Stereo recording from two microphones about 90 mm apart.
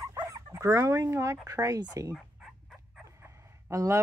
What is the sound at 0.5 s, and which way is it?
Speech, 35° right (ahead or behind).